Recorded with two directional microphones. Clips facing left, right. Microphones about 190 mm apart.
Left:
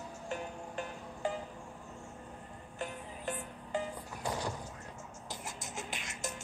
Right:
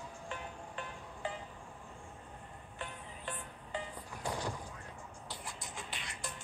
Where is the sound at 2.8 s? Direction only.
45° left (ahead or behind).